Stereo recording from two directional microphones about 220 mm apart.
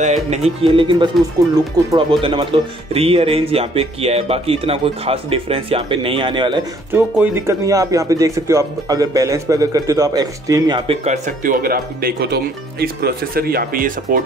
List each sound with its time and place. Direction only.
0.0 s speech: 30° right (ahead or behind)
6.9 s speech: 10° right (ahead or behind)
11.1 s speech: 40° right (ahead or behind)